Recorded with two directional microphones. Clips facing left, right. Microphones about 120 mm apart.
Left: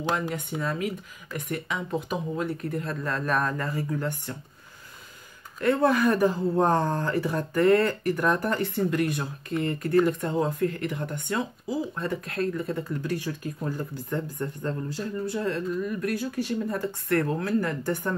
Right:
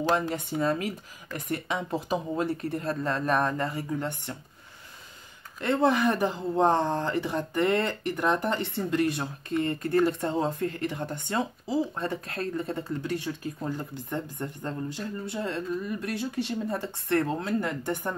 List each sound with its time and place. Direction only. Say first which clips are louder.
0.3 s speech: right 3 dB; 30° right (ahead or behind)
5.6 s speech: left 2 dB; 25° right (ahead or behind)